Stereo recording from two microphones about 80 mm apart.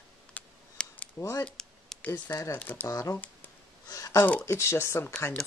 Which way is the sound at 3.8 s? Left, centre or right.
Left.